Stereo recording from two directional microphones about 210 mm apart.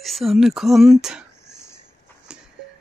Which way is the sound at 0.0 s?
Centre (ahead or behind).